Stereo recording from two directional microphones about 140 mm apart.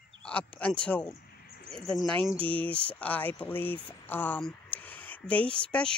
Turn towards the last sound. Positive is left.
turn(degrees=5)  # may be behind; listen again after turning